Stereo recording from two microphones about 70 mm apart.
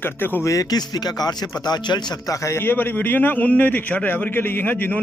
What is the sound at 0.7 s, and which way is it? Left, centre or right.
Speech, left.